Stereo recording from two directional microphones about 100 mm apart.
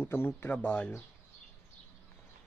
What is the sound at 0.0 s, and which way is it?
Speech, 25° left (ahead or behind).